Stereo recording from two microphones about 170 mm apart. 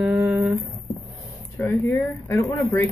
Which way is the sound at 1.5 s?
15° left (ahead or behind).